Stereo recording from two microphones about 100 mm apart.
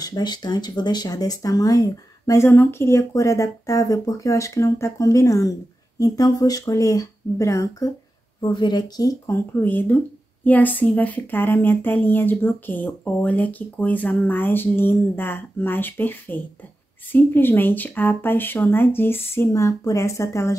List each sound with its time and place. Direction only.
0.0 s speech: 45° left (ahead or behind)
8.4 s a woman's voice: 50° left (ahead or behind)
9.3 s a woman's voice: 20° left (ahead or behind)